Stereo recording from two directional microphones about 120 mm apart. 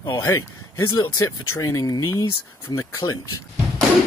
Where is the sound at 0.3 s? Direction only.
25° left (ahead or behind).